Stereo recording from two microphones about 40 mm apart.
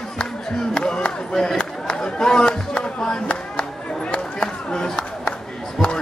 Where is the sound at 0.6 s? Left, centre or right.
Centre.